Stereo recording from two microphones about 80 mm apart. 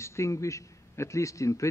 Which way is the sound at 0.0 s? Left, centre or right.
Left.